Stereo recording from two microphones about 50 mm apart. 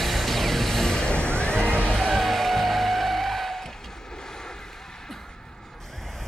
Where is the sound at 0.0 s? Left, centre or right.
Centre.